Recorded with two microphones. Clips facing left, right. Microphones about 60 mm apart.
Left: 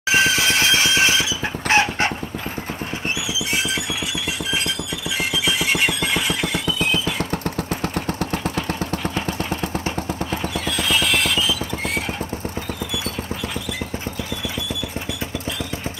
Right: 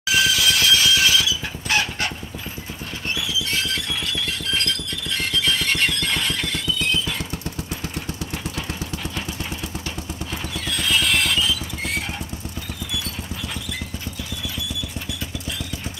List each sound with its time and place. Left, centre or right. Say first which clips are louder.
0.1 s vehicle: left 2 dB; left
3.3 s vehicle: left 1 dB; centre
4.5 s squeal: even; centre
7.2 s vehicle: left 6 dB; left
10.8 s music: even; centre